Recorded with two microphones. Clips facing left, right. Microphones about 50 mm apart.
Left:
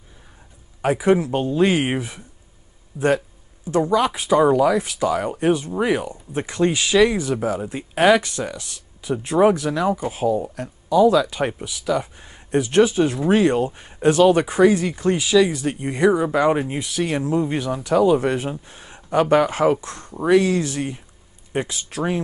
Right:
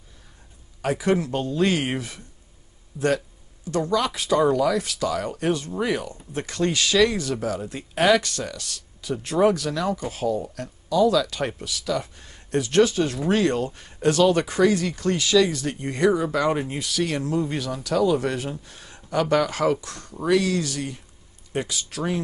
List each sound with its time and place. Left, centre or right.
0.8 s speech: centre